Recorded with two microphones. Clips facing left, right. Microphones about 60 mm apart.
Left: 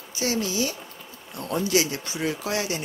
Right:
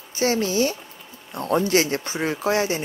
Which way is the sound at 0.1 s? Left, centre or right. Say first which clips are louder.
Right 5 dB; right.